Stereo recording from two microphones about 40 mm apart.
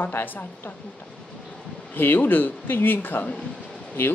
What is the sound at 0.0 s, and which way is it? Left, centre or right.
Speech, left.